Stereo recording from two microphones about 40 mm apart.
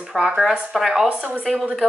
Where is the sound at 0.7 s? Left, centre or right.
Centre.